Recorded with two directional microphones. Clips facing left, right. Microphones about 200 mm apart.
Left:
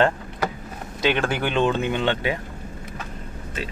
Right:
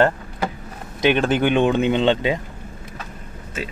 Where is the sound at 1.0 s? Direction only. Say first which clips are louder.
Right 5 dB; 15° right (ahead or behind).